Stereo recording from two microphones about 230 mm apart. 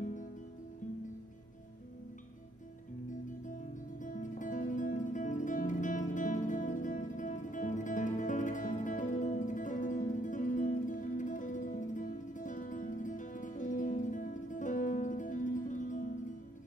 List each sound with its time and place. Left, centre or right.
4.0 s music: left